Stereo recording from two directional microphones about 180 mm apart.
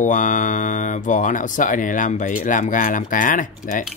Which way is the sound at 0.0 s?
45° left (ahead or behind).